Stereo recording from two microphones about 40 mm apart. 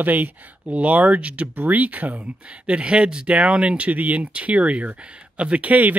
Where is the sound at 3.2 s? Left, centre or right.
Right.